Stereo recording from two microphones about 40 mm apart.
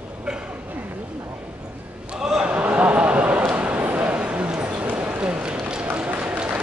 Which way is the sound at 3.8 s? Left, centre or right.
Right.